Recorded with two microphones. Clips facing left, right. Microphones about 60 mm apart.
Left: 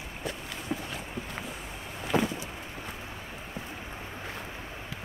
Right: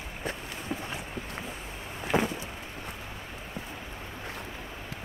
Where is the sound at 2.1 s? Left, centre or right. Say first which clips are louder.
Even; centre.